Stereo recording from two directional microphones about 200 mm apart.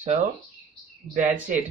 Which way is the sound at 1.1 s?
40° right (ahead or behind).